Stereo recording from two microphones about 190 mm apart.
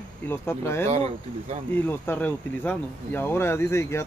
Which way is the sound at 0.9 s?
30° right (ahead or behind).